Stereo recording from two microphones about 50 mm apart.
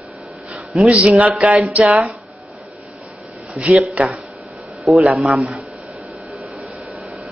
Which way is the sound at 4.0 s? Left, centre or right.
Right.